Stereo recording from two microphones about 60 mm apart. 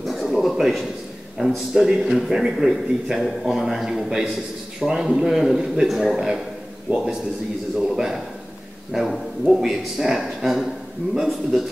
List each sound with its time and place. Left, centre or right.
0.0 s a sound: centre
1.4 s a man's voice: centre
6.9 s a man's voice: right
7.8 s a man's voice: centre